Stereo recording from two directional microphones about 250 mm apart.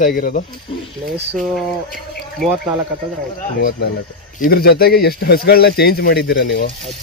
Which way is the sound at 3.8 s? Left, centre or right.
Left.